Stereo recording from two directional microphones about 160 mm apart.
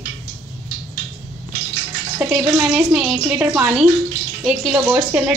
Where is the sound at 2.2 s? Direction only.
10° right (ahead or behind).